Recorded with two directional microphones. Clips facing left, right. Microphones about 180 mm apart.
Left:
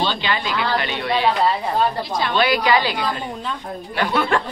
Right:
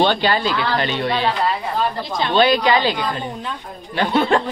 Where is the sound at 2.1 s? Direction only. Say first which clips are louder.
Right 5 dB; 25° right (ahead or behind).